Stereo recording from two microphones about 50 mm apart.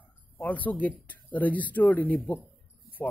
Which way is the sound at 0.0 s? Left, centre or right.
Left.